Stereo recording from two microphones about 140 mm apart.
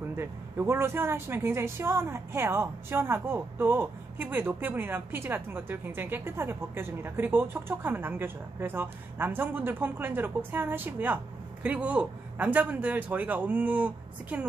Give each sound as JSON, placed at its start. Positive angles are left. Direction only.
{"t": 0.1, "sound": "a woman's voice", "side_deg": -20}